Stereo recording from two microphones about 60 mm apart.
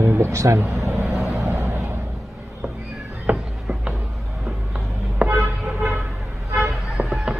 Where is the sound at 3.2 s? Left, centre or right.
Centre.